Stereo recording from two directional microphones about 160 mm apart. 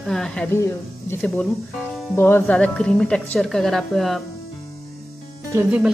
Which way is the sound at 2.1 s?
15° left (ahead or behind).